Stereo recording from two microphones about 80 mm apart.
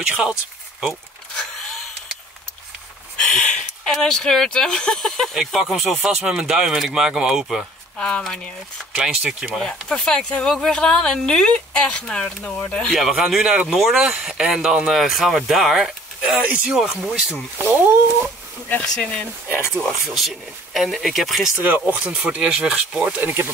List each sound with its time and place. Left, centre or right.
0.0 s speech: centre
3.2 s speech: centre
8.9 s speech: centre
9.7 s speech: centre
12.9 s speech: centre
16.3 s speech: centre
17.3 s speech: right
18.9 s speech: centre
20.2 s speech: centre
21.6 s speech: right